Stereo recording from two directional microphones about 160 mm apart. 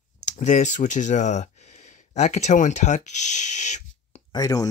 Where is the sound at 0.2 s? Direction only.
50° left (ahead or behind).